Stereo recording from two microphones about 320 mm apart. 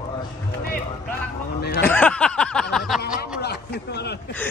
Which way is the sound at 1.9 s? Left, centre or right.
Centre.